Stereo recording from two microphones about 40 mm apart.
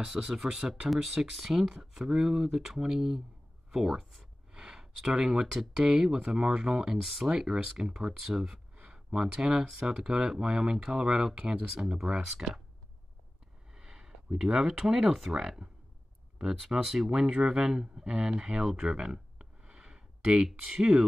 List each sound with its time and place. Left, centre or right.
0.0 s speech: centre
4.5 s a sound: centre
5.5 s speech: centre
7.0 s speech: centre
10.4 s speech: right
13.7 s a sound: centre
14.7 s speech: centre
18.8 s a sound: right
20.7 s speech: centre